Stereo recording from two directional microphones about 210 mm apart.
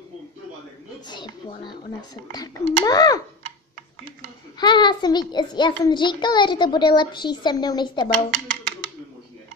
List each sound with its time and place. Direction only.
1.0 s a child's voice: 20° left (ahead or behind)
4.6 s a child's voice: 20° left (ahead or behind)